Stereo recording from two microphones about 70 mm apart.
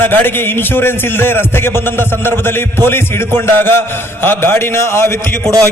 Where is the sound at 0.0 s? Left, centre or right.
Left.